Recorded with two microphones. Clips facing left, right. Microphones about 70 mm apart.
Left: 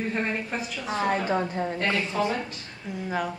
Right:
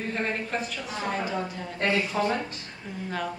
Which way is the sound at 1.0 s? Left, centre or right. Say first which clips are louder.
Left 4 dB; left.